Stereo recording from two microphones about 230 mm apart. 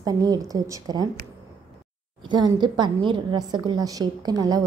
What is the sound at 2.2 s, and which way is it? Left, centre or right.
A woman's voice, centre.